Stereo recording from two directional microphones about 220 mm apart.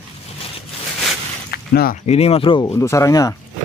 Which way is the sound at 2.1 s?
25° left (ahead or behind).